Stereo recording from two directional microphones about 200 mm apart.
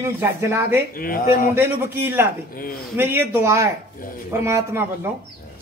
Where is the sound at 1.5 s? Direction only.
10° right (ahead or behind).